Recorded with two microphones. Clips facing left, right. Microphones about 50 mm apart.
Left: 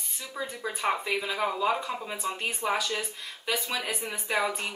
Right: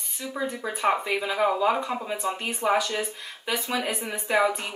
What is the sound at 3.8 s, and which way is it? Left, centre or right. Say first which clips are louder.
Speech: right 3 dB; centre.